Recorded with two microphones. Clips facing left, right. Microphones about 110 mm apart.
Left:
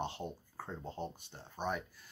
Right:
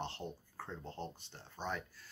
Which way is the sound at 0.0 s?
15° left (ahead or behind).